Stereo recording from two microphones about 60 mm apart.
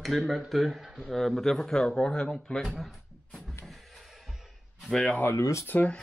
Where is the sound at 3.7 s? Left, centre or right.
Centre.